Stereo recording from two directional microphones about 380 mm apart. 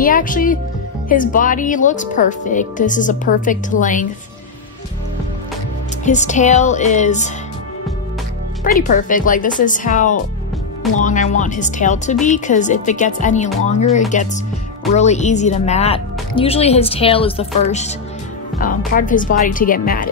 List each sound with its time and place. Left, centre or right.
0.0 s speech: left
6.0 s speech: centre
8.6 s speech: left
18.9 s speech: left